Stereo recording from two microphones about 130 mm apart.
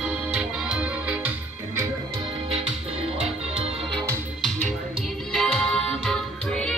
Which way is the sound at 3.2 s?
50° right (ahead or behind).